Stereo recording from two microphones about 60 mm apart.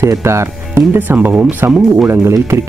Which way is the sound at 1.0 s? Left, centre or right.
Right.